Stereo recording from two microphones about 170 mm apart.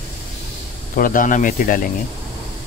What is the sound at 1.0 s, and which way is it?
Speech, 50° left (ahead or behind).